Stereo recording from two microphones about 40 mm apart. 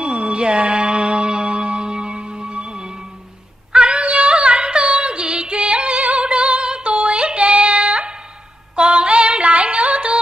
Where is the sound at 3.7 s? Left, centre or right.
Right.